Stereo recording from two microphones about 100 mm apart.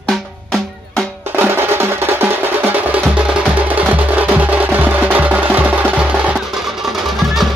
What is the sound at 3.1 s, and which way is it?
Music, 10° right (ahead or behind).